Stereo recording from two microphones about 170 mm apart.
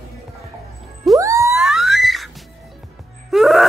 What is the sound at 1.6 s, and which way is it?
Music, centre (ahead or behind).